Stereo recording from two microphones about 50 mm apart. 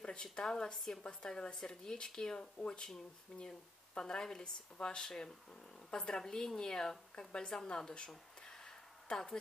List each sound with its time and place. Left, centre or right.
0.0 s a woman's voice: centre
9.1 s a woman's voice: centre